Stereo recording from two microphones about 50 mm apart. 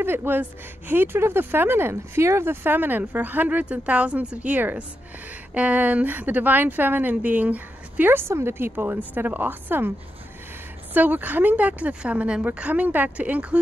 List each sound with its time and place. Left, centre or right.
0.0 s speech: right
8.1 s a woman's voice: right